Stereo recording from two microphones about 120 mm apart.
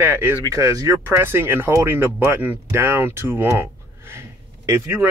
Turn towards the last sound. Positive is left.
turn(degrees=-20)  # may be behind; listen again after turning